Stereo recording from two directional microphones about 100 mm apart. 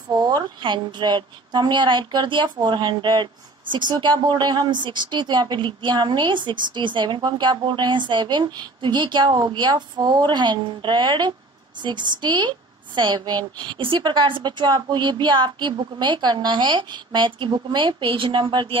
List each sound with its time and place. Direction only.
0.2 s speech: 50° right (ahead or behind)